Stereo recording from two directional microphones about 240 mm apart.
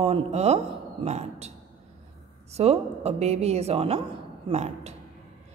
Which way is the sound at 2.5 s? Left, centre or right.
Right.